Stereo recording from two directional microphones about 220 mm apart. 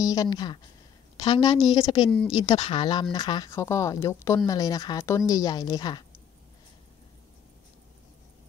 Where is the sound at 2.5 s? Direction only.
20° left (ahead or behind).